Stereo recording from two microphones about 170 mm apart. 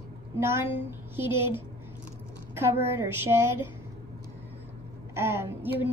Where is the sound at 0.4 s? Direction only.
15° right (ahead or behind).